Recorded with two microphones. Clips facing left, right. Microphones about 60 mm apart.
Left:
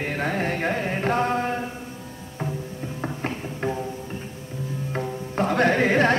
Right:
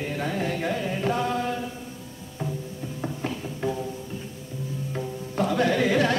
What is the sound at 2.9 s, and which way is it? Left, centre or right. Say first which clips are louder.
Music: left 1 dB; left.